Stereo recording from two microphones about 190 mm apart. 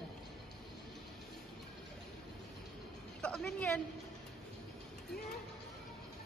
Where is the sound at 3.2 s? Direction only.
5° left (ahead or behind).